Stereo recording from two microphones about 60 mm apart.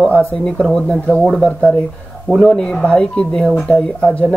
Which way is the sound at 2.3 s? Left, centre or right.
Centre.